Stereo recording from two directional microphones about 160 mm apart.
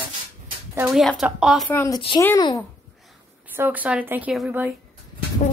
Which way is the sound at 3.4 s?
10° right (ahead or behind).